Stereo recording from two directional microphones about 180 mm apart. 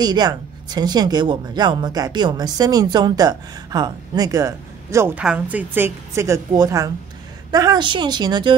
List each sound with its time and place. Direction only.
0.0 s speech: 20° right (ahead or behind)